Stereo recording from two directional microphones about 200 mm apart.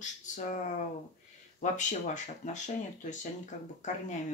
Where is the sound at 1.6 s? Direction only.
40° left (ahead or behind).